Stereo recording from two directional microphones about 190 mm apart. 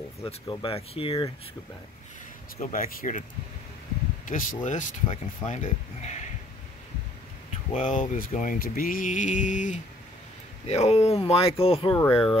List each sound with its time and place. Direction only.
0.2 s speech: 30° left (ahead or behind)
2.5 s speech: 45° left (ahead or behind)
4.3 s speech: 45° left (ahead or behind)
7.7 s speech: 40° left (ahead or behind)